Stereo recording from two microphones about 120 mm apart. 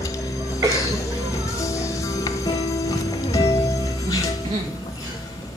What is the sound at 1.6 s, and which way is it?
Music, 25° left (ahead or behind).